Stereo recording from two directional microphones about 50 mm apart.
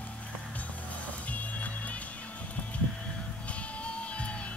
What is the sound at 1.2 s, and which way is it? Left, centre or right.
Music, left.